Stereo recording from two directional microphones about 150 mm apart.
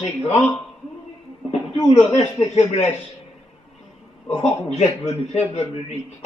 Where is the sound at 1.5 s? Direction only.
45° left (ahead or behind).